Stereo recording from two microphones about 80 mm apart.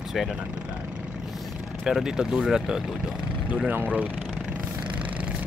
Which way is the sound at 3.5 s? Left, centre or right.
Right.